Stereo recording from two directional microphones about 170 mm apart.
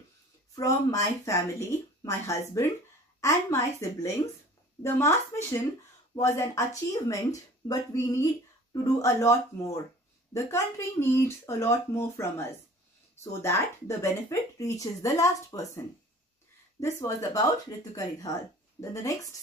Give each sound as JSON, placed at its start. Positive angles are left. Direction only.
{"t": 0.6, "sound": "speech", "side_deg": 20}
{"t": 16.8, "sound": "speech", "side_deg": 20}